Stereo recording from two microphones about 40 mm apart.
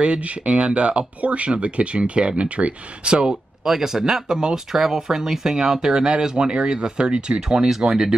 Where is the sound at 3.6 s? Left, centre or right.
Centre.